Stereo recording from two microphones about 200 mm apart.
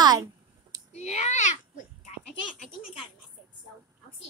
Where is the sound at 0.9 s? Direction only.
35° left (ahead or behind).